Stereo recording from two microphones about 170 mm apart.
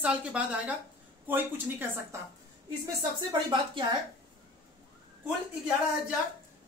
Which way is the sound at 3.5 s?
30° right (ahead or behind).